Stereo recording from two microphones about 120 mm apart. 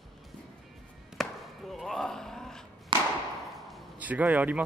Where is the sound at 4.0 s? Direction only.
10° right (ahead or behind).